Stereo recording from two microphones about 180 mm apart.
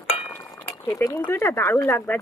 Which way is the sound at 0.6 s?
15° left (ahead or behind).